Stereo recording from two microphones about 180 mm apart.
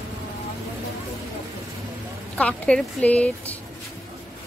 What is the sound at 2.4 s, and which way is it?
A woman's voice, 5° left (ahead or behind).